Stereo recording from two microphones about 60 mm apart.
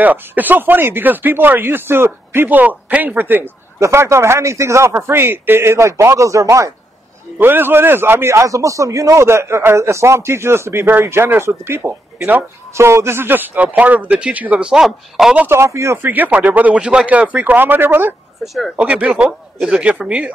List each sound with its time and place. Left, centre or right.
0.0 s speech: right
3.8 s a man's voice: right
7.3 s a man's voice: right
12.2 s speech: right
12.7 s speech: right
14.6 s speech: centre
15.4 s a man's voice: right
16.0 s speech: right
16.8 s speech: centre; by 18.1 s right
18.4 s speech: centre
18.8 s speech: centre